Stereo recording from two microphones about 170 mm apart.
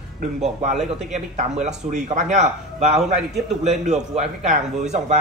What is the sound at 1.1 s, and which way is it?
Speech, 45° right (ahead or behind).